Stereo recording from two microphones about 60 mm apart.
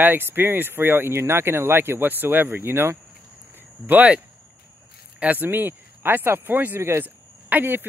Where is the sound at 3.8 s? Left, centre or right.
Right.